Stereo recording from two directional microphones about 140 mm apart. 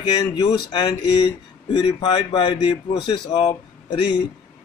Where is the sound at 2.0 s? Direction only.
30° left (ahead or behind).